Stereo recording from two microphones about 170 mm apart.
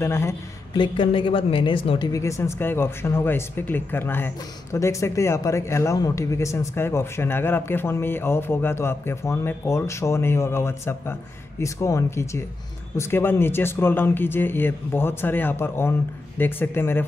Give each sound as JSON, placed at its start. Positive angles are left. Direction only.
{"t": 0.0, "sound": "a man's voice", "side_deg": 15}
{"t": 0.7, "sound": "a man's voice", "side_deg": 30}